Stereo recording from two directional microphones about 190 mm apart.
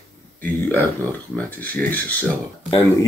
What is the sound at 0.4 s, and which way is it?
Speech, 10° left (ahead or behind).